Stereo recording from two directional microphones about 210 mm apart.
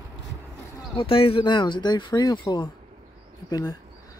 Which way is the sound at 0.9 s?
25° left (ahead or behind).